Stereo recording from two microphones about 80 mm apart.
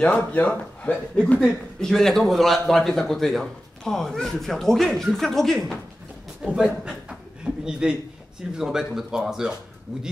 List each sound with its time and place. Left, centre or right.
0.0 s a man's voice: centre
6.4 s a man's voice: centre